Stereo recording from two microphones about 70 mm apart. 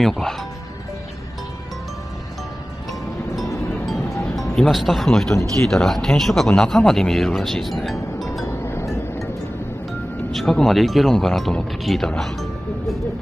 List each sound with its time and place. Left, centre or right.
0.0 s speech: centre
4.4 s speech: centre
8.5 s music: left
10.3 s speech: centre
12.2 s music: centre